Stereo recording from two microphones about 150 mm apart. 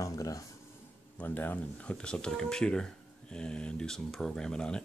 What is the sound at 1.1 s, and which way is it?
Speech, 15° left (ahead or behind).